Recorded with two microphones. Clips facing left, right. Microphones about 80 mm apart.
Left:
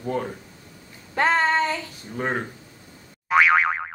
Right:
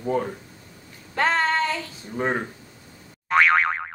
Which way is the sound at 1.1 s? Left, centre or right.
Centre.